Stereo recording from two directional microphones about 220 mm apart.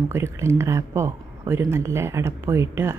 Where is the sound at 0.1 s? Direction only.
10° right (ahead or behind).